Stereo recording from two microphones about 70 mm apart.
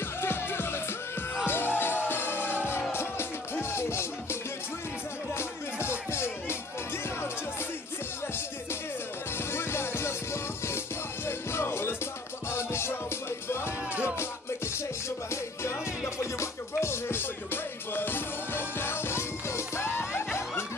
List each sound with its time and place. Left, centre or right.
0.2 s music: left
5.4 s music: left
9.5 s music: left
16.3 s music: left